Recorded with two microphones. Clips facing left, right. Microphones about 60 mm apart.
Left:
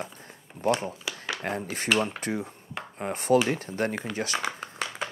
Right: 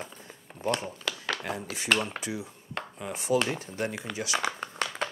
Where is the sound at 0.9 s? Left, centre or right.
Centre.